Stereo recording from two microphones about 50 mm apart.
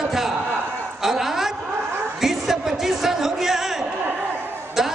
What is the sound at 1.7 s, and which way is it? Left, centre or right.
Chuckle, right.